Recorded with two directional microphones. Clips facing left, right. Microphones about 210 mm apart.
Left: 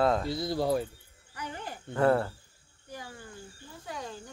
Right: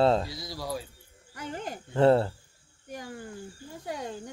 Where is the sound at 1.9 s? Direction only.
25° right (ahead or behind).